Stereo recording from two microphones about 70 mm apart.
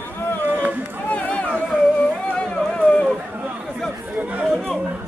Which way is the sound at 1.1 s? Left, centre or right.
Centre.